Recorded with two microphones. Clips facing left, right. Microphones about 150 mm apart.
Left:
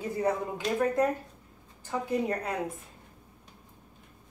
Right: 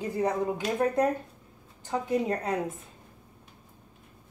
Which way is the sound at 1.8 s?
20° right (ahead or behind).